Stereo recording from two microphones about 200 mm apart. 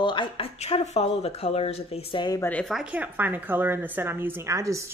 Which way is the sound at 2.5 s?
5° left (ahead or behind).